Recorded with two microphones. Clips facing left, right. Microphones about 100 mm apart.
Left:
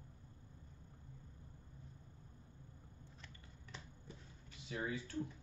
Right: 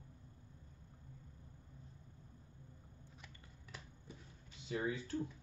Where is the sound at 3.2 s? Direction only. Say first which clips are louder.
Even; 10° right (ahead or behind).